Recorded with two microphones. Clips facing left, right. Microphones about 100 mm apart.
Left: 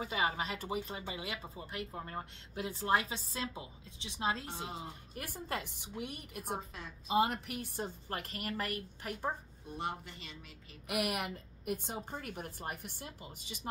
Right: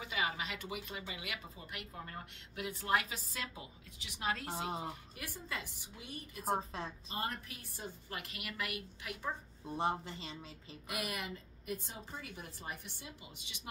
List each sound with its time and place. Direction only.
0.0 s speech: 35° left (ahead or behind)
4.5 s a woman's voice: 30° right (ahead or behind)
5.1 s a woman's voice: 50° left (ahead or behind); by 6.4 s 65° left (ahead or behind)
7.1 s a woman's voice: 80° left; by 9.3 s 40° left (ahead or behind)
9.8 s speech: 30° right (ahead or behind)
10.9 s a woman's voice: 65° left (ahead or behind); by 13.6 s 40° left (ahead or behind)